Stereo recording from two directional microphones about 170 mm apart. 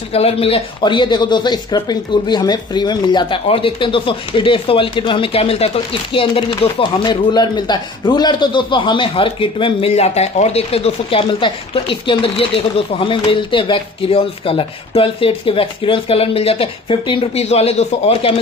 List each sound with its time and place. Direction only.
0.1 s speech: 35° left (ahead or behind)